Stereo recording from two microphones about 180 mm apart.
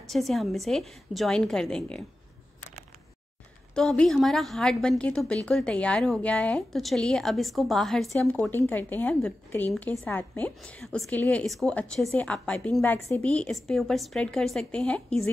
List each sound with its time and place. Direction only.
0.1 s a woman's voice: centre (ahead or behind)
3.7 s a woman's voice: 5° left (ahead or behind)